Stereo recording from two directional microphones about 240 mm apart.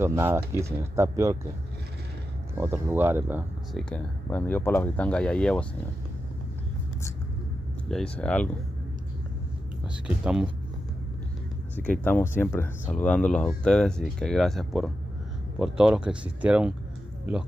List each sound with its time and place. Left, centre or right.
0.0 s speech: centre
2.5 s speech: centre
3.9 s speech: centre
7.9 s speech: centre
10.0 s speech: centre
11.8 s speech: centre